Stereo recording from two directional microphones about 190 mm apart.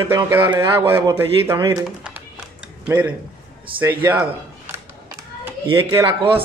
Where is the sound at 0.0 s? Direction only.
10° right (ahead or behind).